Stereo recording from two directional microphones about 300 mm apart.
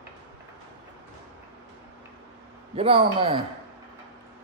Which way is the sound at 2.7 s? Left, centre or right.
Centre.